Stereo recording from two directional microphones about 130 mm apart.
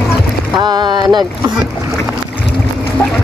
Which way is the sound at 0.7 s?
35° right (ahead or behind).